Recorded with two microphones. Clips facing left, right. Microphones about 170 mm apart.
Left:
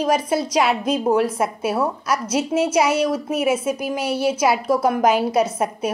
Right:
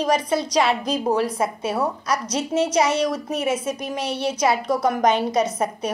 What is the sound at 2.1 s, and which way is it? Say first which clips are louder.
A woman's voice: left 3 dB; 5° left (ahead or behind).